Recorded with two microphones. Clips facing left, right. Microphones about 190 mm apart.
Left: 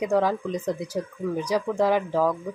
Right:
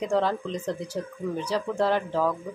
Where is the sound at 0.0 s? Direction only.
10° left (ahead or behind).